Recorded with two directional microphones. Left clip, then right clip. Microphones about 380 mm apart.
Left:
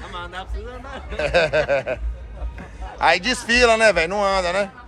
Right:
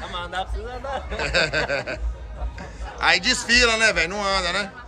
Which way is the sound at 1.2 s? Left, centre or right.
Centre.